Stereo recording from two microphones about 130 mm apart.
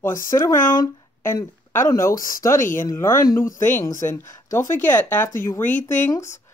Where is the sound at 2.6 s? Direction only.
90° left.